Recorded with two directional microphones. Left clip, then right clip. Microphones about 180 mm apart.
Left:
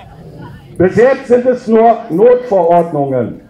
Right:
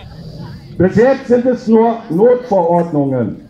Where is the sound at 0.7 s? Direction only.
Centre (ahead or behind).